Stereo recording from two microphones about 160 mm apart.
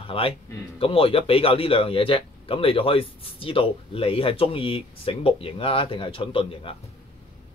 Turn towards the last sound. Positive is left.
turn(degrees=35)  # may be behind; listen again after turning